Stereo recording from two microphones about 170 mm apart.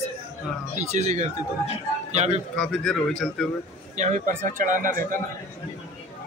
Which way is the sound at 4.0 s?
50° right (ahead or behind).